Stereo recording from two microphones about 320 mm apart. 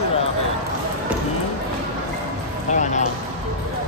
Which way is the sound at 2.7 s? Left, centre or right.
Left.